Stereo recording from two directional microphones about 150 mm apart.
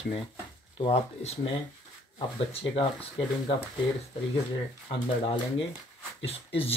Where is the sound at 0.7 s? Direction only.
40° left (ahead or behind).